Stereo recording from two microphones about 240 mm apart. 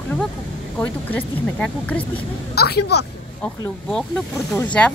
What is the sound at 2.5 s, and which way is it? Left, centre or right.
Speech, left.